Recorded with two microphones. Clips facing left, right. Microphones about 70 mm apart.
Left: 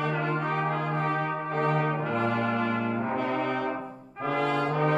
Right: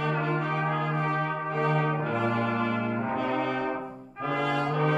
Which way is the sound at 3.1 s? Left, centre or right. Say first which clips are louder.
Even; left.